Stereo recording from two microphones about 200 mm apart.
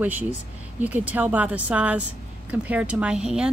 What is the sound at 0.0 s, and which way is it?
A woman's voice, 10° right (ahead or behind).